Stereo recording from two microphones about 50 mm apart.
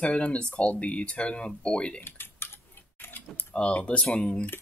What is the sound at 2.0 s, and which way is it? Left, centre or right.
Typing, left.